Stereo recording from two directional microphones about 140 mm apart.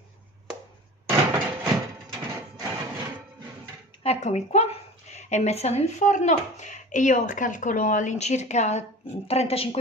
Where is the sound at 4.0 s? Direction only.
50° left (ahead or behind).